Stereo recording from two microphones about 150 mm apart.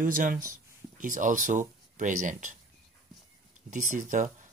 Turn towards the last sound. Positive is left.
turn(degrees=-60)  # may be behind; listen again after turning